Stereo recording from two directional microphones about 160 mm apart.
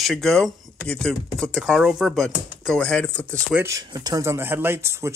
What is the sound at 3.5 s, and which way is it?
Speech, 20° right (ahead or behind).